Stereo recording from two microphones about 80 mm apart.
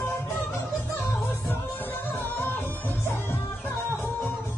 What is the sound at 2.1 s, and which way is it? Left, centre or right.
Music, left.